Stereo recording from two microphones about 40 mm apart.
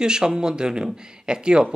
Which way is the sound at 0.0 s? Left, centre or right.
Centre.